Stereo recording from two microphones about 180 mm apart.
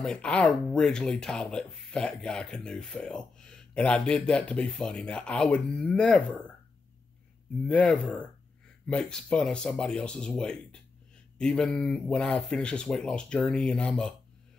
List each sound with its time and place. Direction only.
0.0 s speech: 5° left (ahead or behind)
7.6 s speech: 5° left (ahead or behind)